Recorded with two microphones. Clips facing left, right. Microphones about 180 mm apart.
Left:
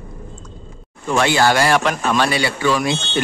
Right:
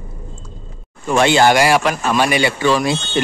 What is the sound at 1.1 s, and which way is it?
Speech, 20° right (ahead or behind).